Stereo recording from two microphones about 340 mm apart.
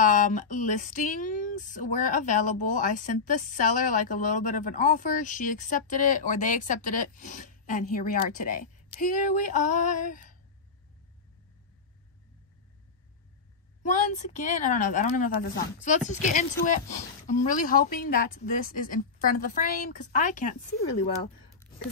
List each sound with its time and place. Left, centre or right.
0.0 s speech: left
13.8 s speech: left